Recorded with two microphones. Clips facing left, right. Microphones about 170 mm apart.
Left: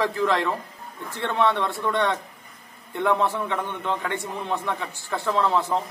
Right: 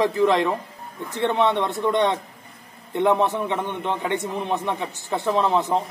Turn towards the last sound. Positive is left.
turn(degrees=-20)  # may be behind; listen again after turning